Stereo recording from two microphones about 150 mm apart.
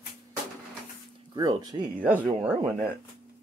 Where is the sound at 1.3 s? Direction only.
25° right (ahead or behind).